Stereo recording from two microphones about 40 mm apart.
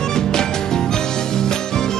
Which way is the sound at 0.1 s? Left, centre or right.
Centre.